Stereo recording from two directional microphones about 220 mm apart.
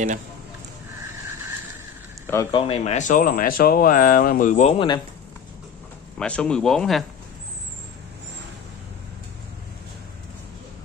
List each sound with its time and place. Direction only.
2.5 s speech: 30° left (ahead or behind)
6.1 s speech: 5° left (ahead or behind)